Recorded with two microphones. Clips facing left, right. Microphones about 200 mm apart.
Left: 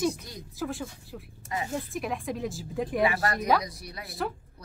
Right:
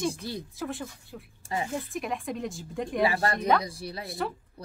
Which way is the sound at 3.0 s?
30° right (ahead or behind).